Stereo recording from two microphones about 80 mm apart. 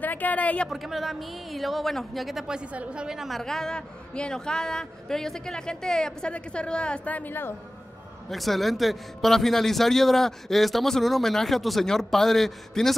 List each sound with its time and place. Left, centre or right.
0.0 s speech: left
0.7 s a woman's voice: centre; by 7.5 s left
8.3 s a woman's voice: centre